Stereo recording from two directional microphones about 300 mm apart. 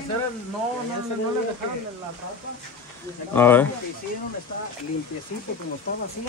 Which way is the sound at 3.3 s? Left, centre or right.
Centre.